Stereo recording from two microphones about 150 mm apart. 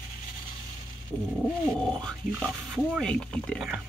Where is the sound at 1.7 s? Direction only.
5° left (ahead or behind).